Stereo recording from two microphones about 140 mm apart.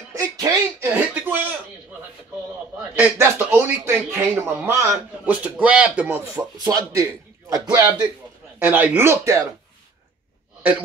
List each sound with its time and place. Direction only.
0.1 s a sound: 25° right (ahead or behind)
3.0 s speech: 15° right (ahead or behind)
6.6 s a man's voice: 25° right (ahead or behind)
8.5 s speech: 15° right (ahead or behind)